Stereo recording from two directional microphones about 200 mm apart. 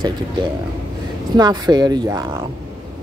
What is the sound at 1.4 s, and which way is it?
Speech, 20° right (ahead or behind).